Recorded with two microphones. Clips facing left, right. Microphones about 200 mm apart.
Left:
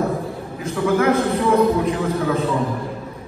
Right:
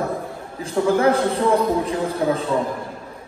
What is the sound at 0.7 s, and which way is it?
A man's voice, 30° right (ahead or behind).